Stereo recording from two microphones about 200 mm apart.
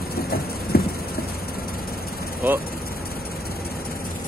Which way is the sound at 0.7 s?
50° left (ahead or behind).